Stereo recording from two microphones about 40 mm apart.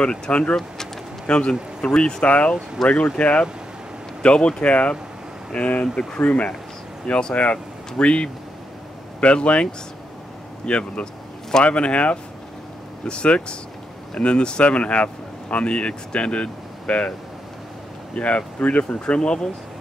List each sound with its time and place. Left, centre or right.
0.0 s speech: left
2.2 s speech: left
2.8 s speech: centre
3.2 s speech: left
4.2 s speech: left
4.6 s speech: left
18.1 s speech: left